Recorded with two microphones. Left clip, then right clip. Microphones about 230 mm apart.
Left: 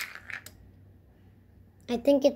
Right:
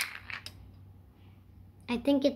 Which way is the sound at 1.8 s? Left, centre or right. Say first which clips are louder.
Left 5 dB; centre.